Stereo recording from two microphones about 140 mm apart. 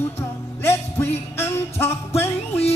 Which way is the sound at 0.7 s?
20° left (ahead or behind).